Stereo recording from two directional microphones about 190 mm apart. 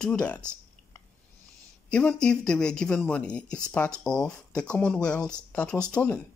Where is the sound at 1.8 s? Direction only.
5° left (ahead or behind).